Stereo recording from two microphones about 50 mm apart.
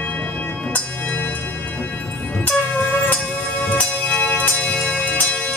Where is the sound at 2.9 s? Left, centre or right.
Left.